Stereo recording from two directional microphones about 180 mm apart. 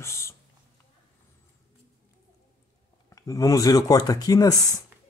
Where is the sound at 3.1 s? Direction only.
20° left (ahead or behind).